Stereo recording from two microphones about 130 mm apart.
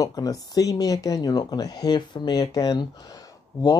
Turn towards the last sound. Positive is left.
turn(degrees=25)  # may be behind; listen again after turning